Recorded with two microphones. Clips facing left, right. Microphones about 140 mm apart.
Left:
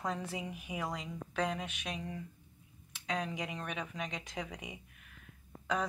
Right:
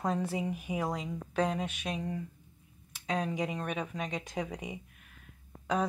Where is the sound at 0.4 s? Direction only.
40° right (ahead or behind).